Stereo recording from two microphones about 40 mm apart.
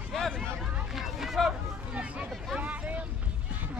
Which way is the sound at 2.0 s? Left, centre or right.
Right.